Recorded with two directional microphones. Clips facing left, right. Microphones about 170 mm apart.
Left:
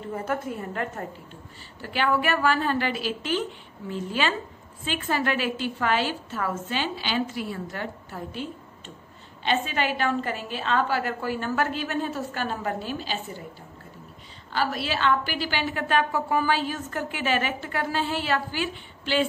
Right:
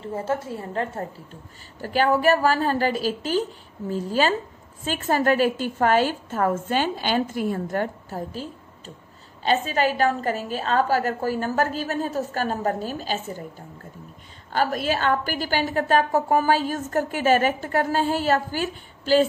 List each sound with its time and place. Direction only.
0.1 s a woman's voice: 30° right (ahead or behind)
1.8 s a woman's voice: 40° right (ahead or behind)